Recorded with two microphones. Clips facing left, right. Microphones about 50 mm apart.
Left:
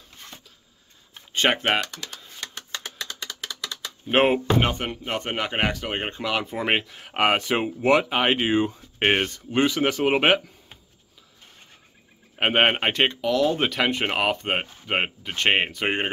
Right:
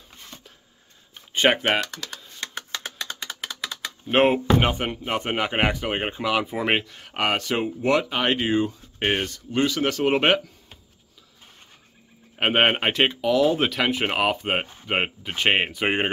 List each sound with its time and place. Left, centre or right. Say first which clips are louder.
1.3 s typing: right 2 dB; centre
1.6 s typing: even; centre
3.0 s a sound: right 1 dB; centre
4.1 s speech: right 1 dB; centre
12.4 s speech: even; centre